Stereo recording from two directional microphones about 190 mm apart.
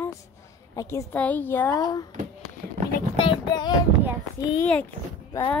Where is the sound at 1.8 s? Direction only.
20° left (ahead or behind).